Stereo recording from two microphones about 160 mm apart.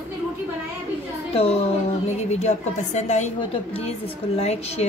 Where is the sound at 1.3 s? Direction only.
40° left (ahead or behind).